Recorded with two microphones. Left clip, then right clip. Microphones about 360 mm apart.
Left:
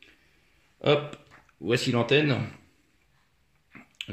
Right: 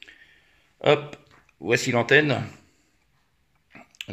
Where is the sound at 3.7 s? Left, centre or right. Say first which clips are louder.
Right 1 dB; centre.